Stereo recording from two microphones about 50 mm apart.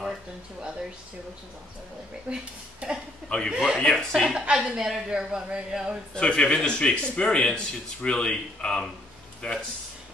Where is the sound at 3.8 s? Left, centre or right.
Centre.